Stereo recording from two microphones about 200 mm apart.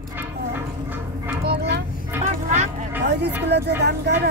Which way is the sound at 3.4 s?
55° right (ahead or behind).